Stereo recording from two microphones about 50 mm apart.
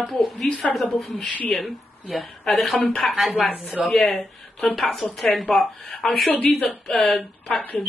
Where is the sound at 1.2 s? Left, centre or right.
Left.